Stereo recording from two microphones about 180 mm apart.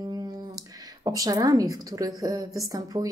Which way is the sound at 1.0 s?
20° right (ahead or behind).